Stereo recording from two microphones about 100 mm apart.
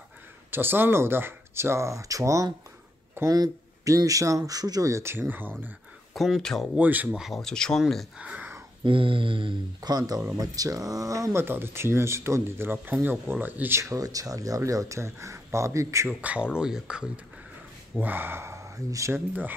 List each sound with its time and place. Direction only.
0.5 s speech: 20° right (ahead or behind)
6.1 s speech: centre (ahead or behind)
6.7 s speech: 15° right (ahead or behind)
7.2 s speech: centre (ahead or behind)
8.2 s speech: 10° right (ahead or behind)
8.8 s a sound: 60° right (ahead or behind)
9.8 s speech: 40° right (ahead or behind)
16.1 s speech: 15° right (ahead or behind)
17.9 s speech: 20° right (ahead or behind)